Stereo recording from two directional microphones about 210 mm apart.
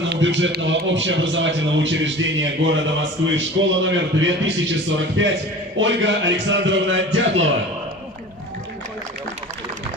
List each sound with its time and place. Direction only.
0.0 s a man's voice: 60° right (ahead or behind)